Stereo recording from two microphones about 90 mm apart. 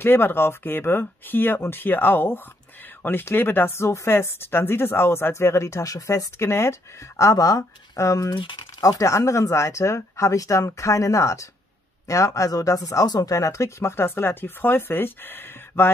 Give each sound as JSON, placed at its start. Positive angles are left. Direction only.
{"t": 0.0, "sound": "speech", "side_deg": 25}